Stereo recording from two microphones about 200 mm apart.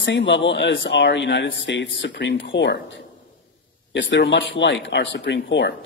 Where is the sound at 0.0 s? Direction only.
65° left (ahead or behind).